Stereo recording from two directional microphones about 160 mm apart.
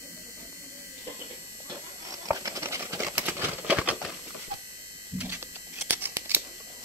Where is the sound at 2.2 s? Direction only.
20° right (ahead or behind).